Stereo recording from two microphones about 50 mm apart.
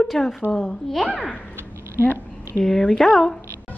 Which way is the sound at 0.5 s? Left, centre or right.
Centre.